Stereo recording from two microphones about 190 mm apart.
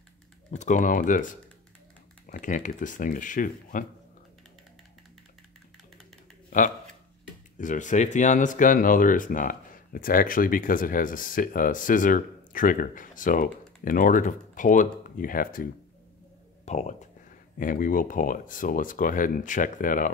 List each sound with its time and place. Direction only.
0.5 s speech: 40° left (ahead or behind)
7.5 s speech: 40° left (ahead or behind)
16.6 s speech: 35° left (ahead or behind)